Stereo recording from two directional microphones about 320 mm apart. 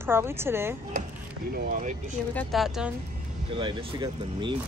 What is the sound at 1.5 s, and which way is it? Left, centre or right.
Speech, right.